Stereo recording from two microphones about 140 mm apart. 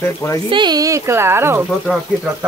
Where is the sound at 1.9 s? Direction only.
10° left (ahead or behind).